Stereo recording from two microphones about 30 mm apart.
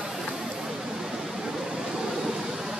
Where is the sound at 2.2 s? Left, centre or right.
Centre.